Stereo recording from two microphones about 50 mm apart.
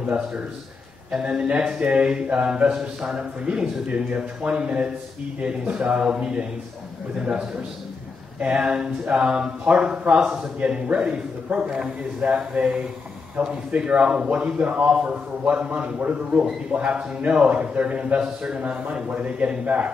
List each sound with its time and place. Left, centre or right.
1.2 s a man's voice: centre
10.6 s a man's voice: right